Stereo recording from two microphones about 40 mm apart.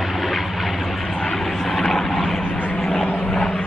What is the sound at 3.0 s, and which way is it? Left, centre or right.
Vehicle, left.